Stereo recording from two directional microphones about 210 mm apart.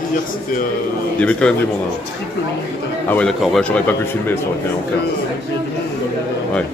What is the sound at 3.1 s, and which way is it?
A man's voice, centre (ahead or behind).